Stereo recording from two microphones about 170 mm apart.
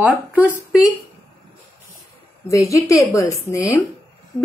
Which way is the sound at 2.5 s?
20° left (ahead or behind).